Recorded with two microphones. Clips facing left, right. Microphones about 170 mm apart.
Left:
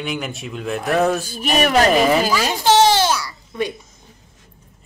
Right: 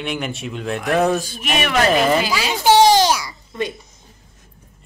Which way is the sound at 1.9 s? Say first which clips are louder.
Left 1 dB; centre (ahead or behind).